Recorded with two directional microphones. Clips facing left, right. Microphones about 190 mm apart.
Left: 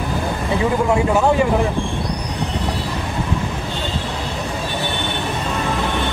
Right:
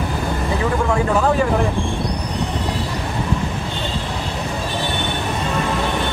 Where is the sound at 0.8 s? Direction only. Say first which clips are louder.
Left 1 dB; 25° left (ahead or behind).